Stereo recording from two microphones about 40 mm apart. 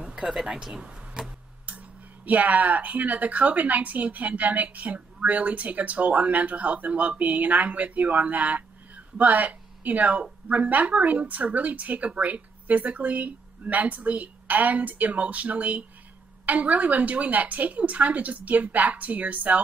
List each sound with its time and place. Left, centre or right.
0.0 s a sound: right
0.3 s speech: centre
1.7 s speech: right